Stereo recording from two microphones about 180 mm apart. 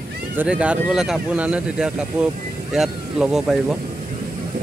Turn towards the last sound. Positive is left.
turn(degrees=0)  # may be behind; listen again after turning